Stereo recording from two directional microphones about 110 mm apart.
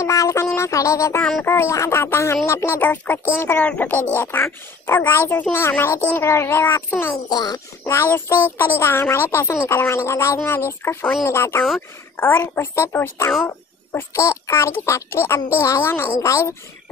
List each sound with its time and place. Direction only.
0.0 s speech: 30° left (ahead or behind)
7.2 s speech: 35° left (ahead or behind); by 13.3 s 20° left (ahead or behind)
13.5 s a sound: 25° left (ahead or behind)
14.4 s speech: 25° left (ahead or behind)